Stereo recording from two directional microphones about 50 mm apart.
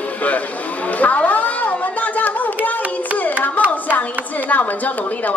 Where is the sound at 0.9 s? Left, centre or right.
Left.